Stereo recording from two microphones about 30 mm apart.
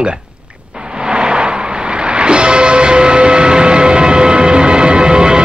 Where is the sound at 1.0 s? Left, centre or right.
Right.